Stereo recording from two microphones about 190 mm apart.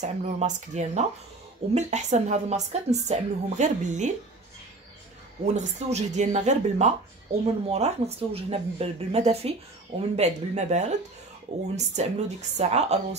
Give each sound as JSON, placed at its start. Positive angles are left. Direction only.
{"t": 0.0, "sound": "a woman's voice", "side_deg": -40}
{"t": 5.4, "sound": "a woman's voice", "side_deg": -35}